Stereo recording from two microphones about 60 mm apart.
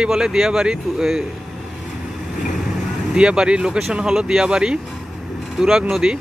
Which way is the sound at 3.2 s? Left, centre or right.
Centre.